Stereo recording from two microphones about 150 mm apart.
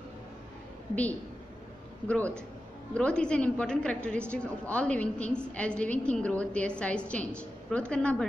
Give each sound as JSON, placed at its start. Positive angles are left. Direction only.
{"t": 2.0, "sound": "a woman's voice", "side_deg": 10}